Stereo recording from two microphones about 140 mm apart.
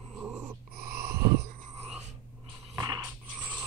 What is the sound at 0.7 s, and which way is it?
Dog, 90° right.